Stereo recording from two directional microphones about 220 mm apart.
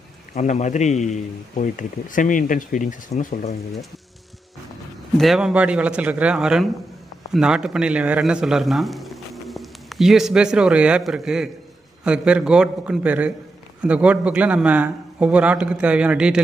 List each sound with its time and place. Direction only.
0.3 s a man's voice: 35° left (ahead or behind)
5.1 s a man's voice: centre (ahead or behind)